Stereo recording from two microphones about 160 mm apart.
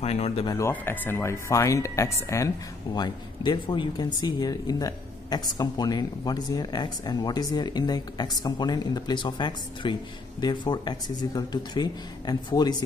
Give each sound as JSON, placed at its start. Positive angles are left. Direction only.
{"t": 0.0, "sound": "speech", "side_deg": 40}
{"t": 0.5, "sound": "speech", "side_deg": 15}